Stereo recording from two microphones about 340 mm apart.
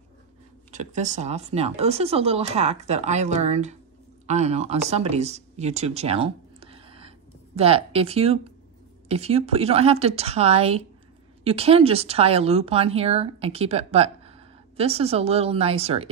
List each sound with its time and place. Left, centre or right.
0.7 s speech: right